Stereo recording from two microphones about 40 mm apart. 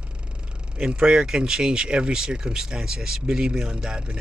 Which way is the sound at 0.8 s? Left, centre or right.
Right.